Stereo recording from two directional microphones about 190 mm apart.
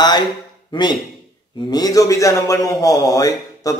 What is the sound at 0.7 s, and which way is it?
A man's voice, 25° left (ahead or behind).